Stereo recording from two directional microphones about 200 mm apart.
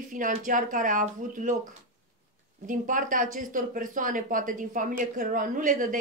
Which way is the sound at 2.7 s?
40° right (ahead or behind).